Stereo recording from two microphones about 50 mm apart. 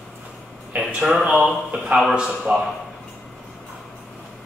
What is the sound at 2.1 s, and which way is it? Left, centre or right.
Speech, centre.